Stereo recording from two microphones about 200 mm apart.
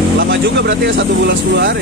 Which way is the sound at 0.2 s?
60° right (ahead or behind).